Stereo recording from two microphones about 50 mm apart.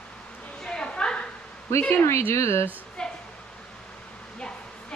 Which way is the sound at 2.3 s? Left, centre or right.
Left.